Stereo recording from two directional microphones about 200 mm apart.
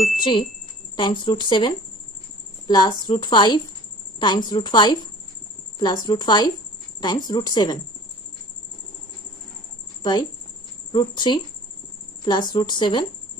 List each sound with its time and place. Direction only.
0.2 s a woman's voice: 25° left (ahead or behind)
10.9 s a woman's voice: 20° left (ahead or behind)